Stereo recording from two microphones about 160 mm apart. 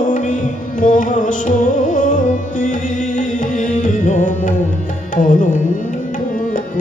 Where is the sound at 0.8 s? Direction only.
55° left (ahead or behind).